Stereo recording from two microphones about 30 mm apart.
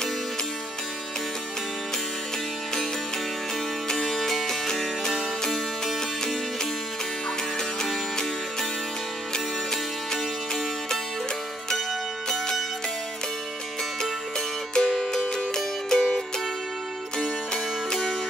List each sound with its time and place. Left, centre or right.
3.9 s music: centre
14.7 s music: left